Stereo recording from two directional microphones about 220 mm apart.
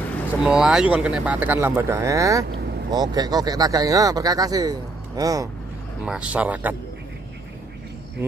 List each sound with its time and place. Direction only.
0.4 s speech: 5° right (ahead or behind)
6.0 s speech: 5° right (ahead or behind)